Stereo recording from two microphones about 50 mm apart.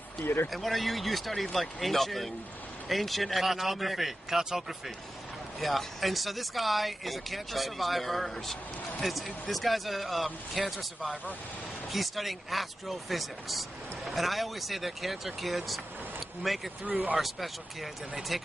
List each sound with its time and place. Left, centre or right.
0.2 s speech: left
0.5 s speech: centre
16.8 s speech: right
18.3 s speech: centre